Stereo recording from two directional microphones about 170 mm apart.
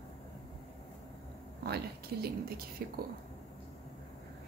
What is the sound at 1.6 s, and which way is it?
Speech, 70° right (ahead or behind).